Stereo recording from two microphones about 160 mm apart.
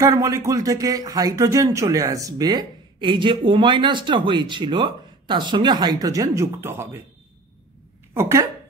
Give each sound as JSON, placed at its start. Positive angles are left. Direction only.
{"t": 0.0, "sound": "speech", "side_deg": -20}
{"t": 8.1, "sound": "speech", "side_deg": -15}